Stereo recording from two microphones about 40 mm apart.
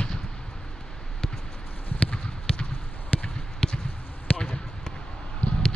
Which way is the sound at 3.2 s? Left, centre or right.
Left.